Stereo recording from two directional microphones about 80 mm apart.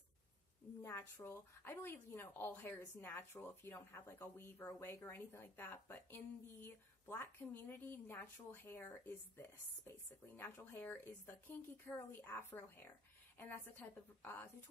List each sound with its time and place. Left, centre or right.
0.8 s a woman's voice: left